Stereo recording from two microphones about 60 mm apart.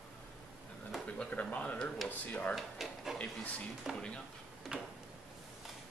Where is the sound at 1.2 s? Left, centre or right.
Left.